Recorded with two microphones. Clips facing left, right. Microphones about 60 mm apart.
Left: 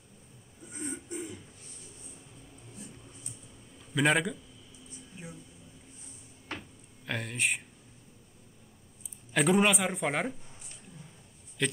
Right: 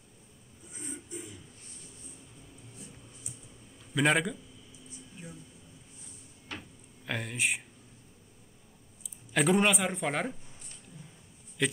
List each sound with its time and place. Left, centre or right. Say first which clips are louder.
0.8 s a sound: left 5 dB; left
3.9 s speech: even; centre
7.1 s speech: even; centre
9.3 s speech: left 1 dB; centre
11.6 s speech: right 1 dB; centre